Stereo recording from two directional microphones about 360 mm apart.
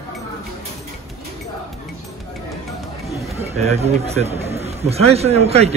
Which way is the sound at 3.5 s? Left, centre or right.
Centre.